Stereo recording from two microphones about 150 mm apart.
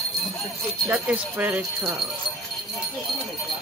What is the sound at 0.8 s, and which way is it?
Speech, 10° right (ahead or behind).